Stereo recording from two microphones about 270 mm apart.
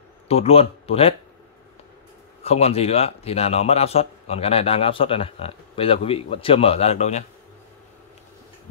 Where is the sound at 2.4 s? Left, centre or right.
Left.